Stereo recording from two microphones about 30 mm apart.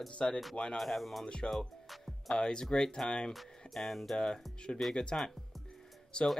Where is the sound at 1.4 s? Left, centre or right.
Centre.